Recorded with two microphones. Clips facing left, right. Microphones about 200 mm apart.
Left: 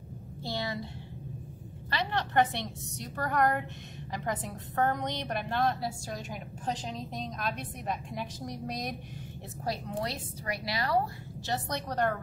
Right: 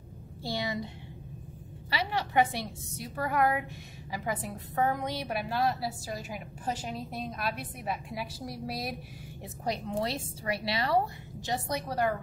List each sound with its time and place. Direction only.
0.4 s a sound: 15° right (ahead or behind)
1.9 s a woman's voice: 10° right (ahead or behind)
9.7 s a woman's voice: 25° right (ahead or behind)
11.4 s a woman's voice: 15° right (ahead or behind)